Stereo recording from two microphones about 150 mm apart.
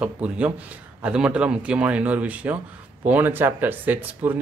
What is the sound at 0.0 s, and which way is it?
Speech, 10° right (ahead or behind).